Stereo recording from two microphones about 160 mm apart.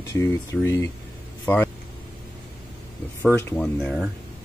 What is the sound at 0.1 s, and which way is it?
Speech, 15° left (ahead or behind).